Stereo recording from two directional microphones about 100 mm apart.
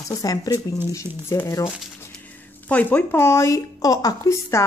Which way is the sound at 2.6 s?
15° left (ahead or behind).